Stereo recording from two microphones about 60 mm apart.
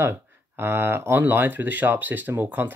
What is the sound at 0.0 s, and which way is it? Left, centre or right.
Speech, right.